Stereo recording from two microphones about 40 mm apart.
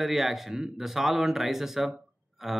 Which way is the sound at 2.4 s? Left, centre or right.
Centre.